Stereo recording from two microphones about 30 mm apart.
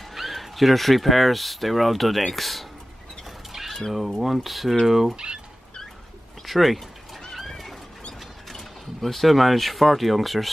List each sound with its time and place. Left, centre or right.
0.1 s speech: centre
4.2 s speech: centre
5.1 s speech: right
6.4 s speech: centre
7.4 s a sound: centre
8.5 s speech: centre